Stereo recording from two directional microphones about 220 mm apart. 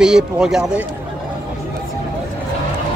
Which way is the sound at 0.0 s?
5° right (ahead or behind).